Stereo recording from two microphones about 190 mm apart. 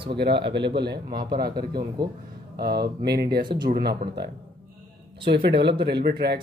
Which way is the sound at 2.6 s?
55° right (ahead or behind).